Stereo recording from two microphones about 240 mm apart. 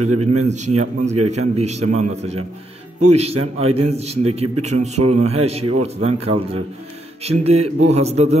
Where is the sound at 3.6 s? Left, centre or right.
Right.